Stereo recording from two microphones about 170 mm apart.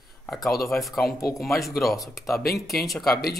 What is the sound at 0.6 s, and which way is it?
Speech, centre (ahead or behind).